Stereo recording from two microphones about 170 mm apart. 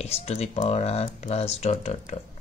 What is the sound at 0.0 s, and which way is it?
A man's voice, 40° left (ahead or behind).